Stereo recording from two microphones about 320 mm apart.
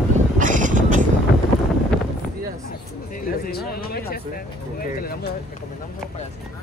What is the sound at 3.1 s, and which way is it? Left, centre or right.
Vehicle, left.